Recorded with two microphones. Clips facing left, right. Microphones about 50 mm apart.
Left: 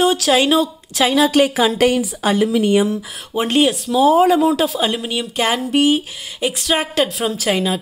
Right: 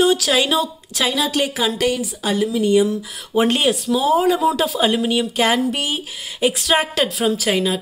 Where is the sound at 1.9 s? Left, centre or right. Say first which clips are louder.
Left 4 dB; left.